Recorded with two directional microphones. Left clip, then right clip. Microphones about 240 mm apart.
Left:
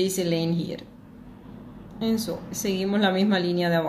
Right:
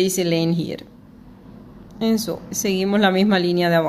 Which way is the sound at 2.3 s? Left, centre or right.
Right.